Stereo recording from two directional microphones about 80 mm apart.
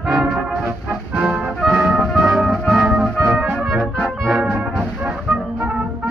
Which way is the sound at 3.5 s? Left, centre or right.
Centre.